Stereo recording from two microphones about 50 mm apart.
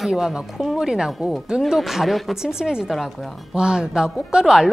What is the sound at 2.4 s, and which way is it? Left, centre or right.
Speech, centre.